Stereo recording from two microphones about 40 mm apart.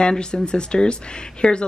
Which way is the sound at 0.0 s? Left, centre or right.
Centre.